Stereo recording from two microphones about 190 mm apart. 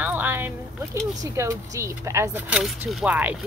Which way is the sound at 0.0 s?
10° right (ahead or behind).